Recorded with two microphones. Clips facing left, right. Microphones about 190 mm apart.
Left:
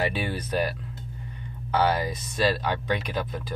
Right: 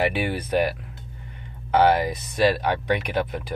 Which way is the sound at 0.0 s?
60° right (ahead or behind).